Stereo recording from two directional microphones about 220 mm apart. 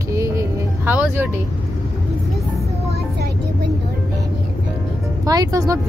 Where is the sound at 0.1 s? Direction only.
15° right (ahead or behind).